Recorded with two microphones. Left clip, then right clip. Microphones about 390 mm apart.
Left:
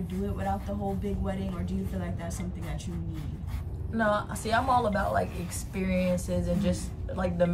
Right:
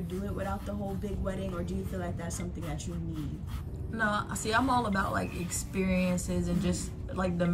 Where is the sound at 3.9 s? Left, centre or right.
Left.